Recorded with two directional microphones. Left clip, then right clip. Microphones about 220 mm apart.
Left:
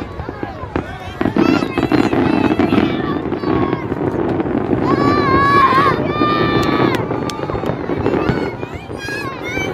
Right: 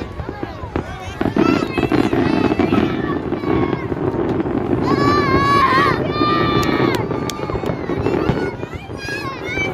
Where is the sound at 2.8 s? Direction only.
10° left (ahead or behind).